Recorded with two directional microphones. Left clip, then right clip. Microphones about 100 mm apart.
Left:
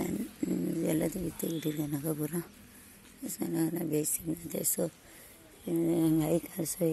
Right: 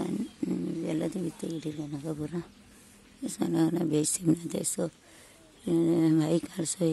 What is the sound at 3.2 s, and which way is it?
Speech, 40° right (ahead or behind).